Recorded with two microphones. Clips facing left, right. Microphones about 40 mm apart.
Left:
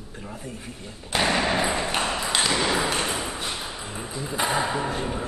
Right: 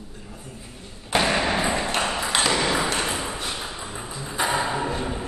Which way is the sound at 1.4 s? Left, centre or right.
Centre.